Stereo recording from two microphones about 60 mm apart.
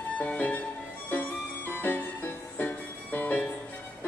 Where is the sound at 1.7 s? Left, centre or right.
Left.